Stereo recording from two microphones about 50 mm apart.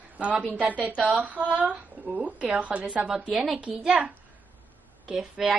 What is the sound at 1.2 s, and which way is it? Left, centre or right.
Speech, right.